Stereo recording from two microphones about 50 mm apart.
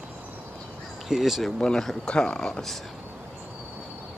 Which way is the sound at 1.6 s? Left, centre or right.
Centre.